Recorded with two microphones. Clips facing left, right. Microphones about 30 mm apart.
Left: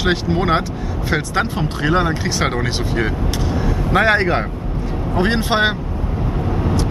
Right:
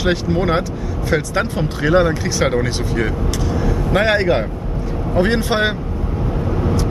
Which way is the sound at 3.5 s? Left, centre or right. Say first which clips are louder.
Right 1 dB; centre.